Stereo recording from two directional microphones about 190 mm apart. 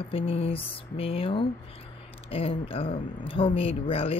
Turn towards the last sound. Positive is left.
turn(degrees=30)  # may be behind; listen again after turning